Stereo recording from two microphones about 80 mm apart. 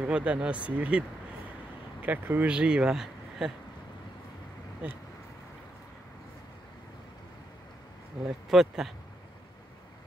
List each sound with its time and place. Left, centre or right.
0.0 s speech: centre
2.4 s speech: centre
8.3 s speech: centre